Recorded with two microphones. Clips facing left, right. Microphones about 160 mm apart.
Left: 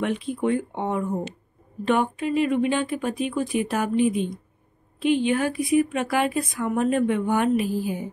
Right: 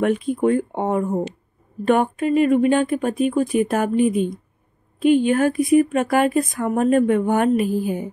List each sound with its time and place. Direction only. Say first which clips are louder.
0.0 s speech: right 6 dB; 45° right (ahead or behind)